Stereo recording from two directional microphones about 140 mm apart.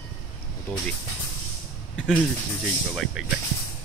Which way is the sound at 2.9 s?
Centre (ahead or behind).